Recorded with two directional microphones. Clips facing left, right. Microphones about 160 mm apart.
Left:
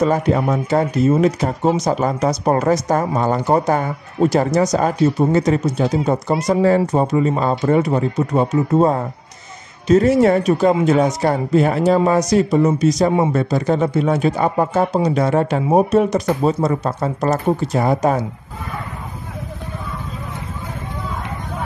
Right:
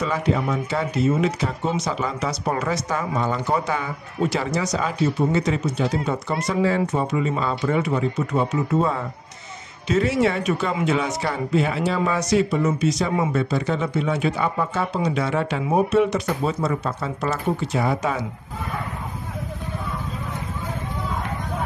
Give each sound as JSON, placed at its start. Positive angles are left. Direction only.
{"t": 0.0, "sound": "speech", "side_deg": 45}